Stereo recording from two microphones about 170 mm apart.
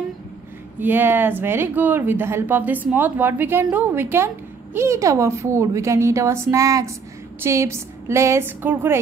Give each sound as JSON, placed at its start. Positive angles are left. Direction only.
{"t": 0.7, "sound": "speech", "side_deg": -10}